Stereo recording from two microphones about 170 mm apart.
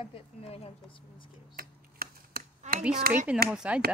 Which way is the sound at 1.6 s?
60° right (ahead or behind).